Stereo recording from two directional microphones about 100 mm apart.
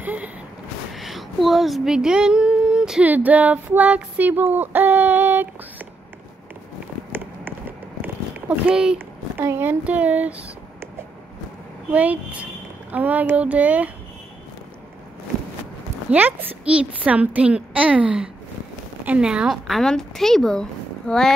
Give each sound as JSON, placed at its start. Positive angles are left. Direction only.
{"t": 0.0, "sound": "a sound", "side_deg": -15}
{"t": 0.9, "sound": "speech", "side_deg": 0}
{"t": 7.1, "sound": "a sound", "side_deg": -20}
{"t": 8.9, "sound": "a woman's voice", "side_deg": -25}
{"t": 11.9, "sound": "a woman's voice", "side_deg": -15}
{"t": 16.1, "sound": "a woman's voice", "side_deg": -20}